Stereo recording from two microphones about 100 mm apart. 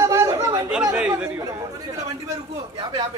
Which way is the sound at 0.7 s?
10° right (ahead or behind).